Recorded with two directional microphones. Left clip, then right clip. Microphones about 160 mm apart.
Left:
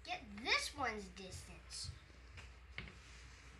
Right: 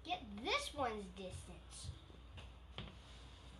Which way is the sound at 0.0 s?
40° right (ahead or behind).